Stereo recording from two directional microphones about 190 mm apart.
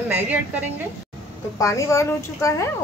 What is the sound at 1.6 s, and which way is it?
A woman's voice, 15° left (ahead or behind).